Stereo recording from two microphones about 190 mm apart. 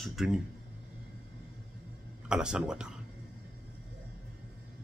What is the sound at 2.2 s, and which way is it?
Speech, 5° right (ahead or behind).